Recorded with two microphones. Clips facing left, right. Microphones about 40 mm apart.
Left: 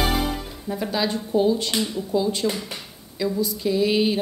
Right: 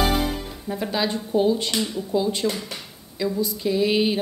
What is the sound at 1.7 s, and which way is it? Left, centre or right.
Speech, centre.